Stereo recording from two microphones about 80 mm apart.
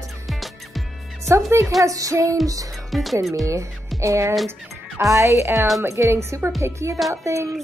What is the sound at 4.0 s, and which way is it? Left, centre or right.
Speech, right.